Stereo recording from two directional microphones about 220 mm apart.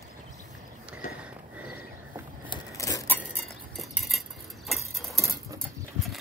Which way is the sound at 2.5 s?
15° left (ahead or behind).